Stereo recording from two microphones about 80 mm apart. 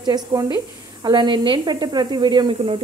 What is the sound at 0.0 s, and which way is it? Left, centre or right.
Speech, right.